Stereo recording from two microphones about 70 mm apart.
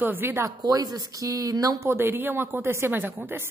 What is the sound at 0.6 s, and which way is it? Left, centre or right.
Speech, right.